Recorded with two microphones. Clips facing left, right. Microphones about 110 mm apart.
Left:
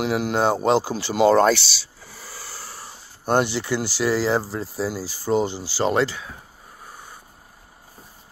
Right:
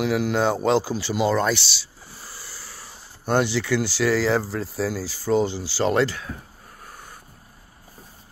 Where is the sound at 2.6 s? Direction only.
45° left (ahead or behind).